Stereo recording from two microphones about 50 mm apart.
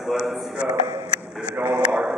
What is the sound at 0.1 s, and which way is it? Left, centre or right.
Speech, centre.